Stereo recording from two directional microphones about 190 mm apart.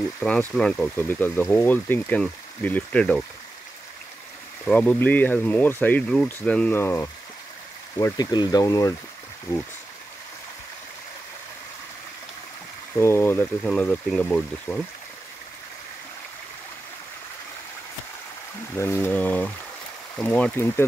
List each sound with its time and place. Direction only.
0.2 s speech: 5° left (ahead or behind)
4.6 s speech: 5° left (ahead or behind)
12.9 s speech: 15° left (ahead or behind)
18.8 s speech: 15° left (ahead or behind)